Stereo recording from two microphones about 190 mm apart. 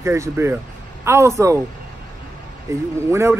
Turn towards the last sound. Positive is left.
turn(degrees=-15)  # may be behind; listen again after turning